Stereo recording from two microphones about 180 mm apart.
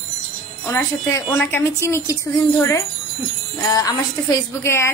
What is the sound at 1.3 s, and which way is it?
Speech, 15° left (ahead or behind).